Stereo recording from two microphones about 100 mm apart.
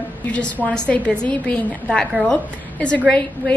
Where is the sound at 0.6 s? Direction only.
10° left (ahead or behind).